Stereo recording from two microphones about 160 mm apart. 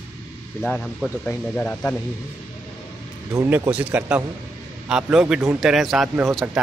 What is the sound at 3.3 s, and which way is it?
A man's voice, 15° right (ahead or behind).